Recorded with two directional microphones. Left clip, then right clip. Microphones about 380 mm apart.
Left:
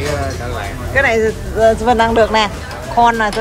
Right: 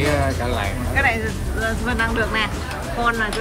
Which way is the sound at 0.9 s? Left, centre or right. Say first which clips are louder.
Left 6 dB; centre.